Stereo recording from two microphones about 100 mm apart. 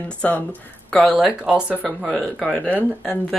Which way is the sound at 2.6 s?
20° left (ahead or behind).